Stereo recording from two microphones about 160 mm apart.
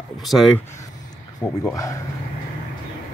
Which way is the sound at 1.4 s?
15° left (ahead or behind).